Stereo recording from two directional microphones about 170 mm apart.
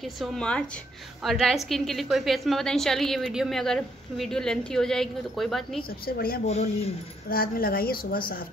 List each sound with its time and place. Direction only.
0.0 s a woman's voice: 5° left (ahead or behind)
5.9 s a woman's voice: 60° left (ahead or behind)
6.4 s speech: 35° left (ahead or behind)
7.2 s a woman's voice: 60° left (ahead or behind)